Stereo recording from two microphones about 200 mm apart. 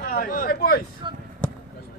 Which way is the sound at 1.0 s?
25° right (ahead or behind).